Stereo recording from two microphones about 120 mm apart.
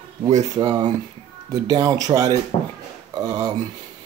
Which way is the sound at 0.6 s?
35° right (ahead or behind).